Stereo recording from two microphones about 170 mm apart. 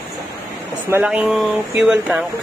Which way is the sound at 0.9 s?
10° right (ahead or behind).